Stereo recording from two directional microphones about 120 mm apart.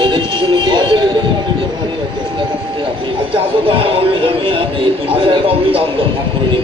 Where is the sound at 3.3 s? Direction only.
50° right (ahead or behind).